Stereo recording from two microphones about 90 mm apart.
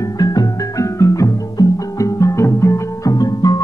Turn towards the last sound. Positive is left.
turn(degrees=45)  # may be behind; listen again after turning